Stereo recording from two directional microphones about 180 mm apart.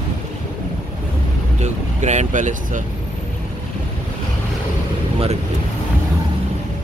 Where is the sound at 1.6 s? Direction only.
40° right (ahead or behind).